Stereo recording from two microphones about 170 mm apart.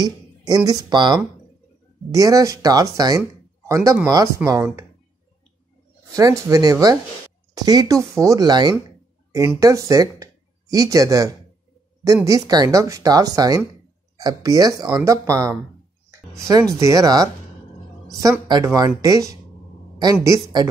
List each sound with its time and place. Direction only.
0.5 s a woman's voice: 20° right (ahead or behind)
6.1 s a woman's voice: 20° right (ahead or behind)
16.8 s a woman's voice: 20° right (ahead or behind)